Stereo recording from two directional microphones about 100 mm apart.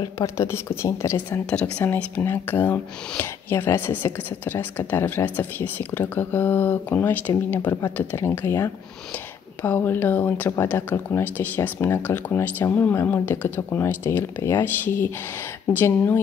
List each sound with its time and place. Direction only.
0.0 s speech: 30° left (ahead or behind)
1.4 s speech: 10° left (ahead or behind)